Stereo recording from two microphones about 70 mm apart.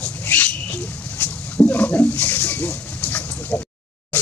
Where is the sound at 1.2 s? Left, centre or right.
Left.